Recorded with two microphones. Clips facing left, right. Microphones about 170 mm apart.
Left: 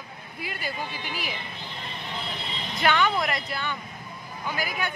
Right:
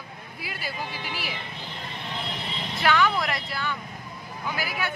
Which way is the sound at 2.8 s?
Centre (ahead or behind).